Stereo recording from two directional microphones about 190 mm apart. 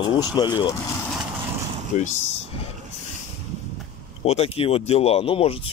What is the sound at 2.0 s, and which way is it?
Speech, 40° left (ahead or behind).